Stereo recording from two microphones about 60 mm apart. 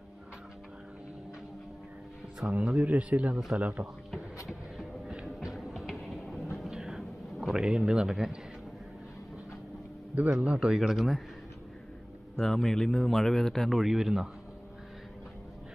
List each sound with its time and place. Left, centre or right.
2.5 s speech: right
4.5 s a sound: centre
5.1 s music: centre
6.5 s a sound: centre
10.4 s speech: centre
12.4 s speech: centre